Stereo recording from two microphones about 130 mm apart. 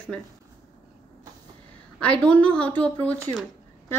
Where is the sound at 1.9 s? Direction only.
10° left (ahead or behind).